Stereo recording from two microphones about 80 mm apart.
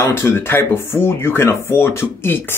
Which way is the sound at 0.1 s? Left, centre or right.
Left.